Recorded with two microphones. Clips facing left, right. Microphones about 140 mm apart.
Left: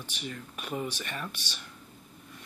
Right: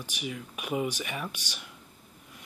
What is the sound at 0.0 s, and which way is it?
Speech, 10° right (ahead or behind).